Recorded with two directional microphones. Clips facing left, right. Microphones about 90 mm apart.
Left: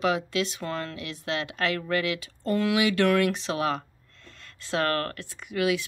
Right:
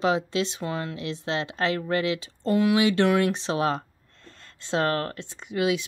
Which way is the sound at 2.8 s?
30° right (ahead or behind).